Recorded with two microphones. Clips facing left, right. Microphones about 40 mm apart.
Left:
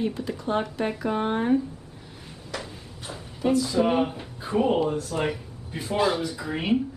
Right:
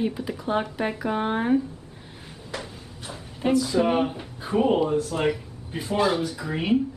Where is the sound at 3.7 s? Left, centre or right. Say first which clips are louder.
Right 1 dB; centre.